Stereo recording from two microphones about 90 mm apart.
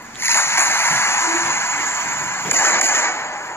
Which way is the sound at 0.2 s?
25° left (ahead or behind).